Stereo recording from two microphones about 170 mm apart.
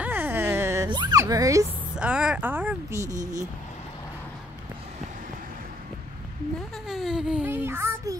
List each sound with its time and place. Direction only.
0.0 s a sound: 10° right (ahead or behind)
2.0 s speech: 5° right (ahead or behind)
6.9 s a child's voice: centre (ahead or behind)